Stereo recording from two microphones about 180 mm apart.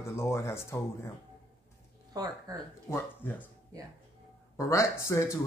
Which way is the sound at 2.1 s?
20° right (ahead or behind).